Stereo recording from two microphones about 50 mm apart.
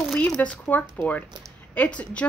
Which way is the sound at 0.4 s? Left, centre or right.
Left.